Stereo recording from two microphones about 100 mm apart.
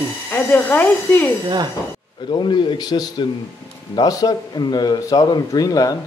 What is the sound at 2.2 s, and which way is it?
A man's voice, 50° left (ahead or behind).